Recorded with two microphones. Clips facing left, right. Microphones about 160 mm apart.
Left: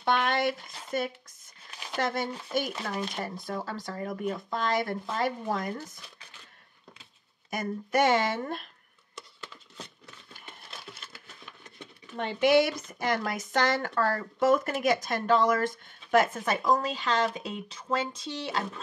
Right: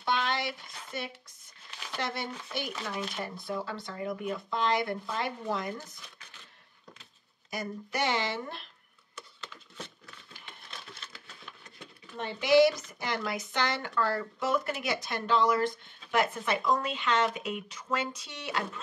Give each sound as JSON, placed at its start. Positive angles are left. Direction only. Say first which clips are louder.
{"t": 0.0, "sound": "a sound", "louder": "left 5 dB", "side_deg": 55}
{"t": 2.0, "sound": "speech", "louder": "left 5 dB", "side_deg": 45}
{"t": 7.5, "sound": "speech", "louder": "left 7 dB", "side_deg": 50}
{"t": 12.2, "sound": "speech", "louder": "even", "side_deg": 55}